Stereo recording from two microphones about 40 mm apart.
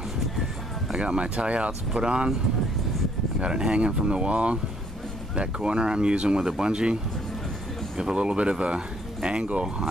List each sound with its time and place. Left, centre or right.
0.9 s speech: right
3.3 s speech: right
8.0 s speech: right